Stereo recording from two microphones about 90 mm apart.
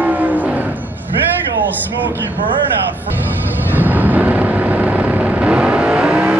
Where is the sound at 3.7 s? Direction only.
20° right (ahead or behind).